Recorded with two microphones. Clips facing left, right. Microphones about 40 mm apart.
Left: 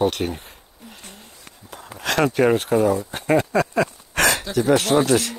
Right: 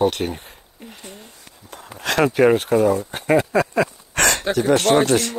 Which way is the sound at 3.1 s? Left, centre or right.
Centre.